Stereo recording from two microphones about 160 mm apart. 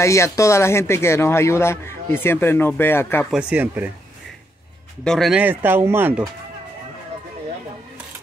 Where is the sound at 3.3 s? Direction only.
5° right (ahead or behind).